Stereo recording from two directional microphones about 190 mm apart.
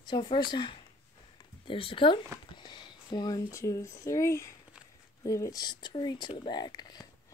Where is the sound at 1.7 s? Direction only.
30° left (ahead or behind).